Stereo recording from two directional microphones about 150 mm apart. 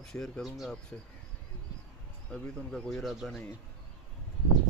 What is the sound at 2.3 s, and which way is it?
Speech, 5° left (ahead or behind).